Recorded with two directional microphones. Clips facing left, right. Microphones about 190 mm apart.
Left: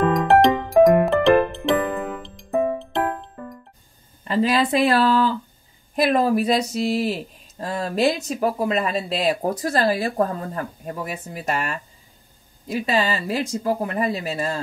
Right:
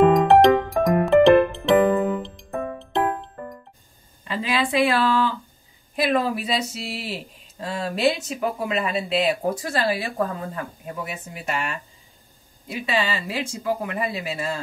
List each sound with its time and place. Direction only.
0.3 s music: centre (ahead or behind)
4.2 s speech: 40° left (ahead or behind)